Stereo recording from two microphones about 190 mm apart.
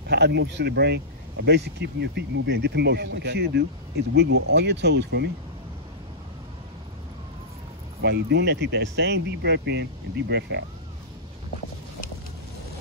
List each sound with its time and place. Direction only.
0.1 s speech: 60° right (ahead or behind)
8.0 s speech: 60° right (ahead or behind)